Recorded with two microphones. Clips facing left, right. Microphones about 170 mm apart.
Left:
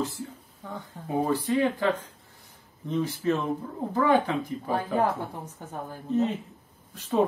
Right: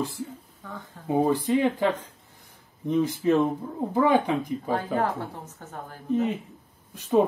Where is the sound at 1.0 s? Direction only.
15° right (ahead or behind).